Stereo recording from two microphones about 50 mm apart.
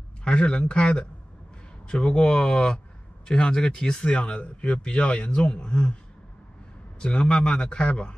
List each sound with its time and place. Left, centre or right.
0.2 s speech: left
7.2 s speech: left